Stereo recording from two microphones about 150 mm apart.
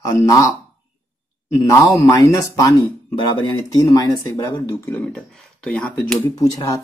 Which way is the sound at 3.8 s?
25° left (ahead or behind).